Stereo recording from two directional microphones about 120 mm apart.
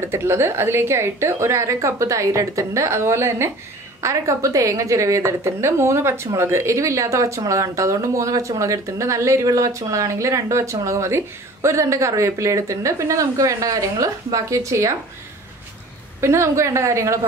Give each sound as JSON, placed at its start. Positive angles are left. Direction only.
{"t": 0.0, "sound": "a woman's voice", "side_deg": -20}
{"t": 16.2, "sound": "a woman's voice", "side_deg": -25}